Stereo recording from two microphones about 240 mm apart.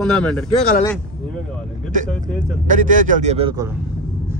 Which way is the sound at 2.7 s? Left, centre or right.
Right.